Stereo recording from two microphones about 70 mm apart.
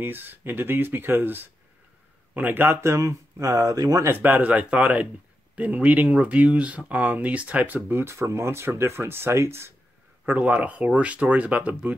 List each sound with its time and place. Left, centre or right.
0.0 s speech: right
4.0 s speech: right
10.2 s speech: right